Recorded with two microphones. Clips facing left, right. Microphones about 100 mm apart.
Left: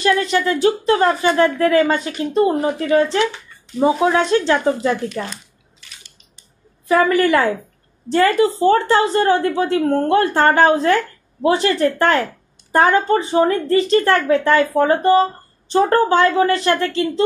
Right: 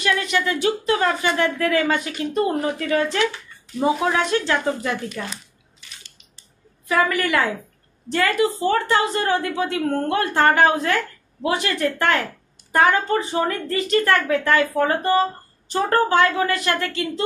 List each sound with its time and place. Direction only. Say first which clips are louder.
0.0 s speech: left 5 dB; 35° left (ahead or behind)
6.9 s a woman's voice: left 6 dB; 30° left (ahead or behind)